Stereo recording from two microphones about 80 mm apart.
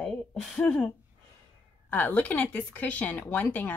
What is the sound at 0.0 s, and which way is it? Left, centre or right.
Speech, centre.